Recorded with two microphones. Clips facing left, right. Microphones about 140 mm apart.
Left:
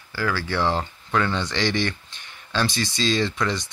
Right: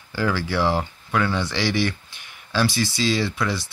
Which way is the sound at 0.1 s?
15° right (ahead or behind).